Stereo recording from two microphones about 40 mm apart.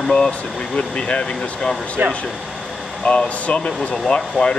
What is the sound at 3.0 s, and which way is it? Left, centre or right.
Speech, left.